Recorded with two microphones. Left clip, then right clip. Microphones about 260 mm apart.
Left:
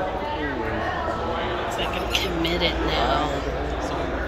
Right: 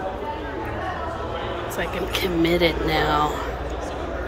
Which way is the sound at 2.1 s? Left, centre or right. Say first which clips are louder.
Right 5 dB; right.